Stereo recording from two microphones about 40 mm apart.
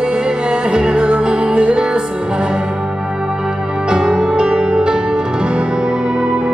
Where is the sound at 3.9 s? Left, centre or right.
Centre.